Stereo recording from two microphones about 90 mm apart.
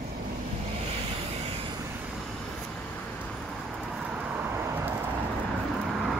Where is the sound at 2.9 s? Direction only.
15° left (ahead or behind).